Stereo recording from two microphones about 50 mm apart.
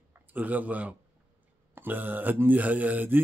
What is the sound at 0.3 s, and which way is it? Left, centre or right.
Speech, right.